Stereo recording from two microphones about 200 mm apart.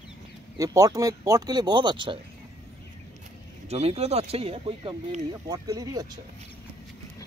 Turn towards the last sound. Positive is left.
turn(degrees=-20)  # may be behind; listen again after turning